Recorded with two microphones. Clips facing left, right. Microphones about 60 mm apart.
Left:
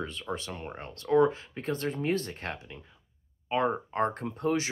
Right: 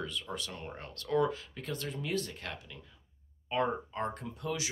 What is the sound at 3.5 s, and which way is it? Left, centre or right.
Speech, left.